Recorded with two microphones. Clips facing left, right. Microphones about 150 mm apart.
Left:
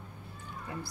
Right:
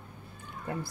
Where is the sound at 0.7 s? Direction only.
55° right (ahead or behind).